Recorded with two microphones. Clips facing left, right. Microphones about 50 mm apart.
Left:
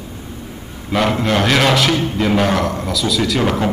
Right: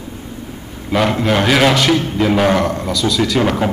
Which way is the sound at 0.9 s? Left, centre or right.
Centre.